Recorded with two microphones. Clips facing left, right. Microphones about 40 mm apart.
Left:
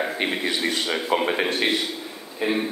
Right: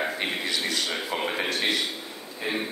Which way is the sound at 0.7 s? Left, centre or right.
Left.